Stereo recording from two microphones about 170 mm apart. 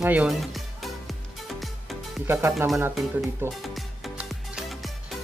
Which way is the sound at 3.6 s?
Centre (ahead or behind).